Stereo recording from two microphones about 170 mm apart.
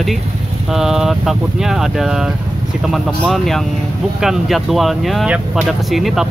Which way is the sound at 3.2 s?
Centre (ahead or behind).